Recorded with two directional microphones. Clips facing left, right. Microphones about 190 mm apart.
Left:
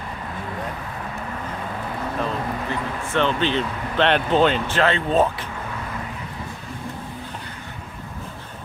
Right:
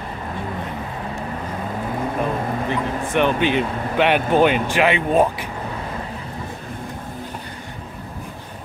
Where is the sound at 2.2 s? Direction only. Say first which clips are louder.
Right 3 dB; 15° right (ahead or behind).